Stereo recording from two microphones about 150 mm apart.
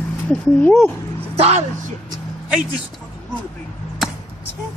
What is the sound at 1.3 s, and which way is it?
Speech, 45° right (ahead or behind).